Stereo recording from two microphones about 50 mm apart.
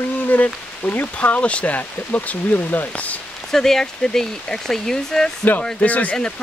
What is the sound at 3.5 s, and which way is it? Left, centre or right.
Speech, centre.